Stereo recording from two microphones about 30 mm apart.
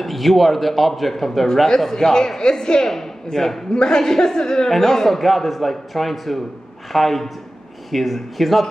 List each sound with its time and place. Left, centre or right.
0.0 s a man's voice: centre
1.9 s a man's voice: centre
3.7 s a man's voice: left; by 8.6 s centre